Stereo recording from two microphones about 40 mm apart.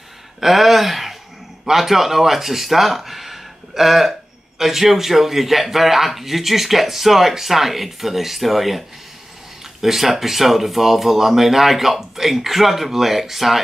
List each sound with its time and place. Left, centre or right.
0.4 s speech: centre